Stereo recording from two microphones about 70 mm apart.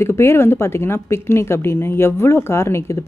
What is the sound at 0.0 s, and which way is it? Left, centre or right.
A woman's voice, left.